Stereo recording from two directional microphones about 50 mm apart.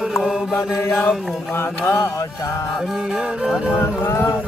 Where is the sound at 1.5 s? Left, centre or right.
Left.